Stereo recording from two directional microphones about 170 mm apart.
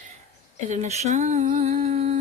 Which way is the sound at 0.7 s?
45° right (ahead or behind).